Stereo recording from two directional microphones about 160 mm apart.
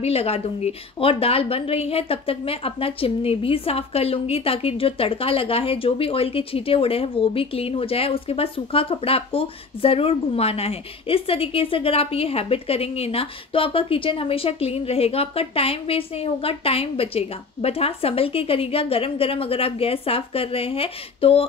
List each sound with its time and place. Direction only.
0.0 s a woman's voice: 40° left (ahead or behind)